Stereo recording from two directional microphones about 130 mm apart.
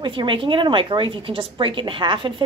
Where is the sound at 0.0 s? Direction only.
40° right (ahead or behind).